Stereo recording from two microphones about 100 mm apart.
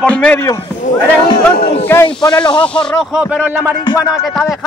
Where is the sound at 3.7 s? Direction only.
45° left (ahead or behind).